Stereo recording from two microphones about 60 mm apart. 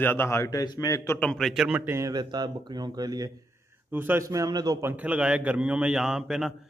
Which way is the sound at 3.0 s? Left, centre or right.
Right.